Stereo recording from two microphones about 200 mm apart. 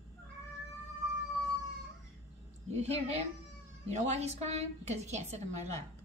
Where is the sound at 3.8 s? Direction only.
35° right (ahead or behind).